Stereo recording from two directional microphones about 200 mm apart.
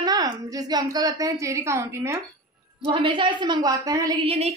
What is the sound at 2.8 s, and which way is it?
A woman's voice, 25° right (ahead or behind).